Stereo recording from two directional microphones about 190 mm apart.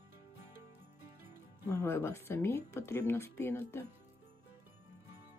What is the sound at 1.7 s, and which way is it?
Speech, 10° left (ahead or behind).